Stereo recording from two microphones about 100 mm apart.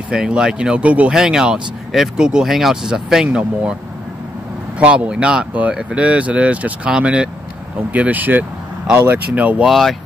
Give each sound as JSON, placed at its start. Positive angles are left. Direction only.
{"t": 0.1, "sound": "speech", "side_deg": -10}
{"t": 4.7, "sound": "speech", "side_deg": -10}
{"t": 9.7, "sound": "speech", "side_deg": 0}